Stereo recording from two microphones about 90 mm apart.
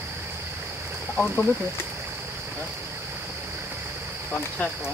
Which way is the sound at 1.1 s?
20° left (ahead or behind).